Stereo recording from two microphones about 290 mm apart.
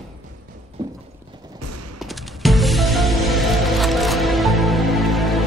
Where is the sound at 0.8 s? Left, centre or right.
Centre.